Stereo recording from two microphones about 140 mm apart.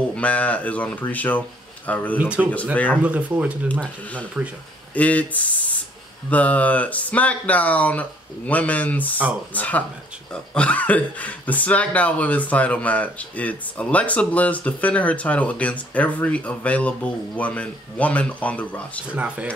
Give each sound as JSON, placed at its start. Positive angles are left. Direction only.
{"t": 0.1, "sound": "speech", "side_deg": 10}
{"t": 2.1, "sound": "speech", "side_deg": -10}
{"t": 2.7, "sound": "speech", "side_deg": 10}
{"t": 3.0, "sound": "speech", "side_deg": -10}
{"t": 3.8, "sound": "speech", "side_deg": 10}
{"t": 19.1, "sound": "speech", "side_deg": -10}